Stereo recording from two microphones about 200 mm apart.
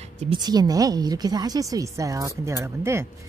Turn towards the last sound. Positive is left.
turn(degrees=-15)  # may be behind; listen again after turning